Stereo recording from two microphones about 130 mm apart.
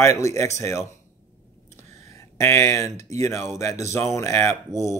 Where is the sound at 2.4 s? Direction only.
20° left (ahead or behind).